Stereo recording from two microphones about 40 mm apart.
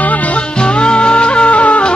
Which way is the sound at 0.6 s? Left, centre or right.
Left.